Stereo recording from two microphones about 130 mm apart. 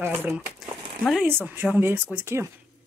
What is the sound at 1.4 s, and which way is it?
Speech, 15° right (ahead or behind).